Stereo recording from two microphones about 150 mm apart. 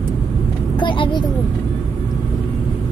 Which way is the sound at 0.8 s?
30° left (ahead or behind).